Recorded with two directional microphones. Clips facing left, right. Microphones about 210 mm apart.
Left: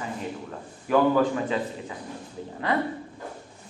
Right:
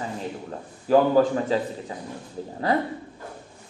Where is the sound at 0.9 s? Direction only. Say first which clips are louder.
Right 3 dB; 35° right (ahead or behind).